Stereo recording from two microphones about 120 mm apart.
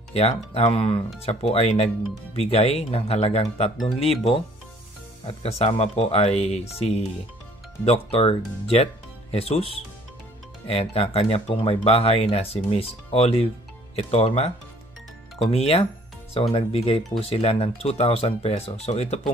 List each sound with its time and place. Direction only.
0.1 s speech: 60° left (ahead or behind)
5.2 s speech: 55° left (ahead or behind)
15.5 s speech: 60° left (ahead or behind)